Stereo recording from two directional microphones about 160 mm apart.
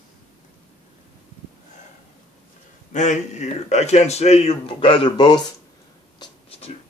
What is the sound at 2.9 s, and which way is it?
A man's voice, 50° left (ahead or behind).